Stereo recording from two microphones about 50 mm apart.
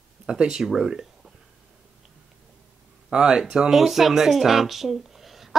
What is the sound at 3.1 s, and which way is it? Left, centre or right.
Speech, centre.